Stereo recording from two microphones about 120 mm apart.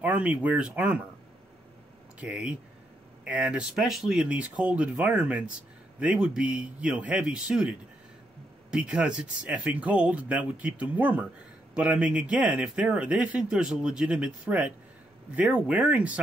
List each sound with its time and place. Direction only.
0.0 s speech: 10° right (ahead or behind)
2.1 s speech: 10° right (ahead or behind)